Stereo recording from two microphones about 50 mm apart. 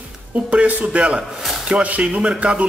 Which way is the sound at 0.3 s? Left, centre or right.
Right.